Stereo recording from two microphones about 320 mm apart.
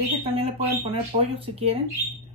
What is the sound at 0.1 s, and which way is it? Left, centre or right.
Speech, centre.